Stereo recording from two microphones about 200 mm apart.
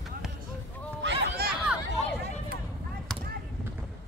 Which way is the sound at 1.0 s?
60° right (ahead or behind).